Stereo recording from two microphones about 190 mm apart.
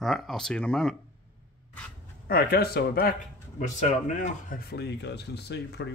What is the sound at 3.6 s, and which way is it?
Speech, 40° left (ahead or behind).